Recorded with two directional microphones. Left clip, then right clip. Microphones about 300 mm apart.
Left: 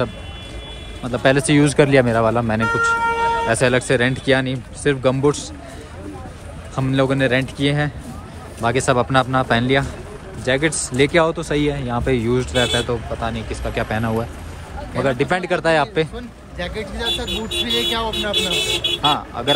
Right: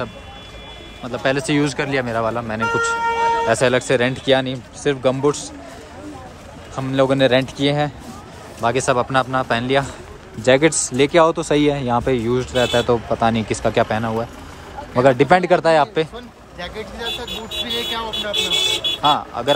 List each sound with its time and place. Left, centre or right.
1.0 s speech: centre
3.1 s music: right
3.4 s speech: centre
6.7 s speech: centre
17.3 s speech: centre
17.6 s speech: centre